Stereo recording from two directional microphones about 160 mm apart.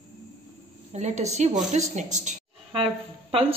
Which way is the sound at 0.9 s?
45° right (ahead or behind).